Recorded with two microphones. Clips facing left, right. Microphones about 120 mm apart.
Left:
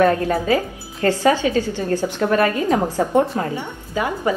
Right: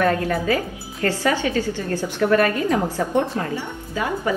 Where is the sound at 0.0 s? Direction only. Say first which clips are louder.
Left 3 dB; 25° left (ahead or behind).